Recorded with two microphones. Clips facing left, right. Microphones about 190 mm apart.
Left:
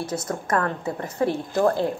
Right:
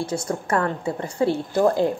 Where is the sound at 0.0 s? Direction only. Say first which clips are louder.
Right 2 dB; 10° right (ahead or behind).